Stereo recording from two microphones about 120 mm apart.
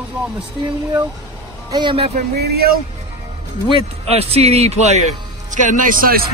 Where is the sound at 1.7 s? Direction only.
40° right (ahead or behind).